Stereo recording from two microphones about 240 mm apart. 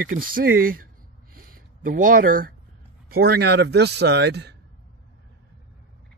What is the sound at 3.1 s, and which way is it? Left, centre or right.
A man's voice, right.